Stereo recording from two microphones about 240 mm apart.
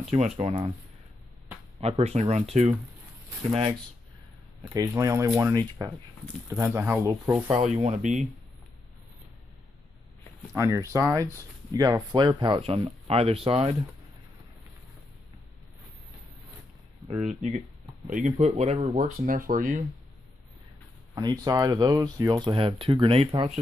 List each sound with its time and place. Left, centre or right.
0.1 s speech: right
1.8 s speech: right
4.7 s speech: centre
7.5 s speech: right
10.5 s speech: centre
17.2 s speech: right
21.1 s speech: centre